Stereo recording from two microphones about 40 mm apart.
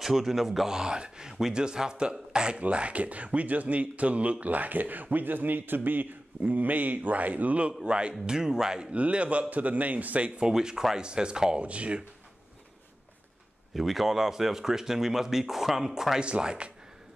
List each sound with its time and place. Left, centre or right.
0.0 s speech: centre
0.7 s speech: right
2.6 s a man's voice: right; by 8.8 s centre
8.9 s a man's voice: right
10.4 s speech: centre
11.6 s a man's voice: right
13.7 s speech: centre
16.2 s speech: right